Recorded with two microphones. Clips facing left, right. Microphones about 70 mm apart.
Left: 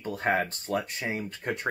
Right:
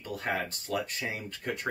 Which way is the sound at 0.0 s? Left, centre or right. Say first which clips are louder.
Left 6 dB; left.